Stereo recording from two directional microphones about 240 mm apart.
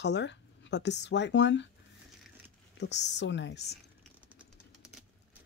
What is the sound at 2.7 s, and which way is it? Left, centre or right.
Speech, left.